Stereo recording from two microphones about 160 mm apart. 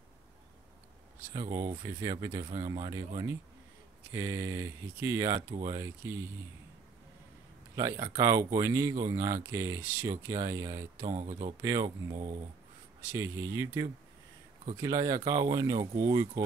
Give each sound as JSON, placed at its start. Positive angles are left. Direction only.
{"t": 1.3, "sound": "speech", "side_deg": -25}
{"t": 4.1, "sound": "speech", "side_deg": -20}
{"t": 7.7, "sound": "speech", "side_deg": -20}
{"t": 11.1, "sound": "speech", "side_deg": -35}
{"t": 11.6, "sound": "speech", "side_deg": -25}